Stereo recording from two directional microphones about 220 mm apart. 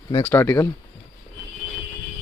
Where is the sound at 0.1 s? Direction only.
20° left (ahead or behind).